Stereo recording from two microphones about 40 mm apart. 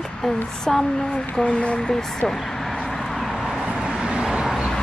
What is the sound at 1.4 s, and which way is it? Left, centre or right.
Speech, left.